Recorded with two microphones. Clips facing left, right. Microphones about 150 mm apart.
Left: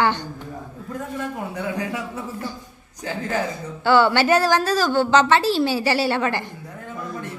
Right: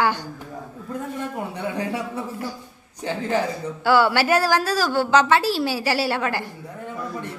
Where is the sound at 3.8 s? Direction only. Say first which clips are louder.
Left 2 dB; 5° right (ahead or behind).